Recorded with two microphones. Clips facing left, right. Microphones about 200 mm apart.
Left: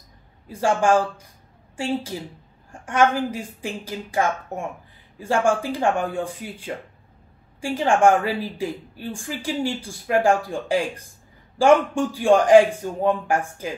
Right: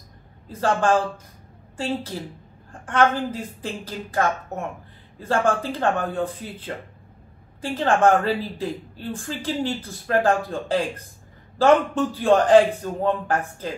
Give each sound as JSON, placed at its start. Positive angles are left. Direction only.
{"t": 0.5, "sound": "a woman's voice", "side_deg": 10}